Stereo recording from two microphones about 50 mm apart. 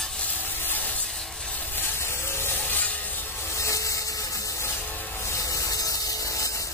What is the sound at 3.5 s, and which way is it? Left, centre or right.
Wood, left.